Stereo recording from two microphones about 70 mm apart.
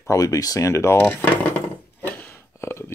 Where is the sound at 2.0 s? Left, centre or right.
Left.